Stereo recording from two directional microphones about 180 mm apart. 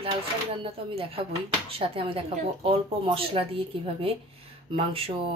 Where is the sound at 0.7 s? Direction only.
30° right (ahead or behind).